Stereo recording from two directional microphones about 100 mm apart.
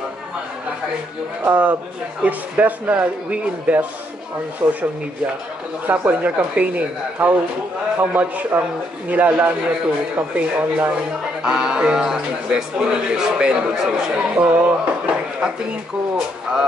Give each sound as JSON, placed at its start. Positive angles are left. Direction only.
{"t": 1.4, "sound": "a man's voice", "side_deg": -15}
{"t": 5.9, "sound": "a man's voice", "side_deg": -15}